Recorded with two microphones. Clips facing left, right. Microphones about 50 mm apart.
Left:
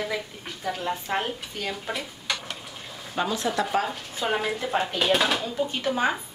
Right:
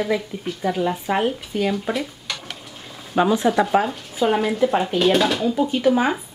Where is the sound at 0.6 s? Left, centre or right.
Centre.